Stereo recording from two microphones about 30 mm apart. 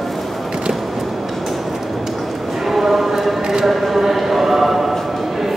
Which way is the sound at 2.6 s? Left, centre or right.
Centre.